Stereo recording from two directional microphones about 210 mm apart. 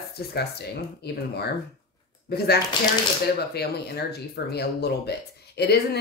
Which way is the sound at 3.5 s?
50° left (ahead or behind).